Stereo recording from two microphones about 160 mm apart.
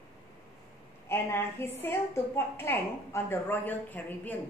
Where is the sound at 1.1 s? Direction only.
15° left (ahead or behind).